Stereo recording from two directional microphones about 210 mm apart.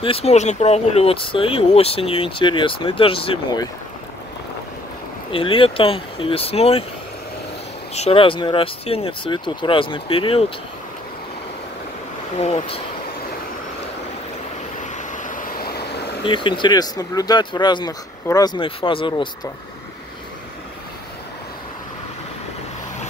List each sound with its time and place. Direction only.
0.0 s speech: 30° left (ahead or behind)
5.3 s speech: 25° left (ahead or behind)
7.9 s speech: 30° left (ahead or behind)
12.4 s speech: 30° left (ahead or behind)
14.8 s vehicle: 40° left (ahead or behind)
16.3 s speech: 25° left (ahead or behind)